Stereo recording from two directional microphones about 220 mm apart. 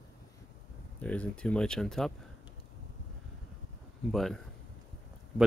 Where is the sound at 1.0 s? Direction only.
5° left (ahead or behind).